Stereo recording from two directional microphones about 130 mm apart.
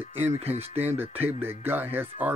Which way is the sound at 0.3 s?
55° right (ahead or behind).